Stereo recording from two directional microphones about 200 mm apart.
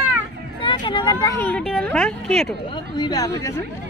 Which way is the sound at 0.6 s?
25° left (ahead or behind).